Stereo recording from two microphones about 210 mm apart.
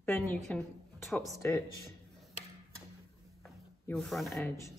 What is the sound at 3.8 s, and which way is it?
Speech, centre (ahead or behind).